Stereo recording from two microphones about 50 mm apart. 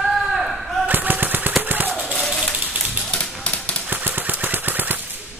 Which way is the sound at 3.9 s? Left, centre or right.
Right.